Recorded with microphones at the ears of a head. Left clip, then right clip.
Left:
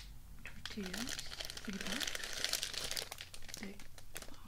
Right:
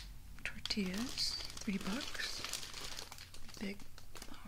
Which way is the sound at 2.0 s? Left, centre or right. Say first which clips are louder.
Left 2 dB; left.